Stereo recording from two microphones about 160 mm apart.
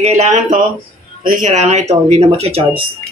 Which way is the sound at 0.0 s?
45° right (ahead or behind).